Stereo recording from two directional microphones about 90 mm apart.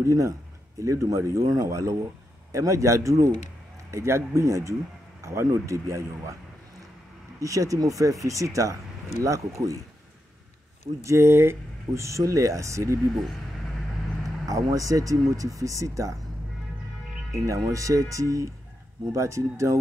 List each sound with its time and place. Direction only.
0.0 s speech: 35° right (ahead or behind)
7.3 s speech: 40° right (ahead or behind)
11.1 s speech: 30° right (ahead or behind)
13.1 s speech: centre (ahead or behind)
14.2 s speech: 40° right (ahead or behind)
17.5 s speech: 40° right (ahead or behind)